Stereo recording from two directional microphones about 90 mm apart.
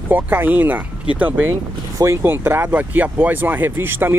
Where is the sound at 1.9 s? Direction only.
30° right (ahead or behind).